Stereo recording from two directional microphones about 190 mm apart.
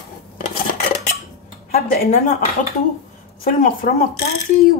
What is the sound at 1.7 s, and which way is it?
Speech, 50° left (ahead or behind).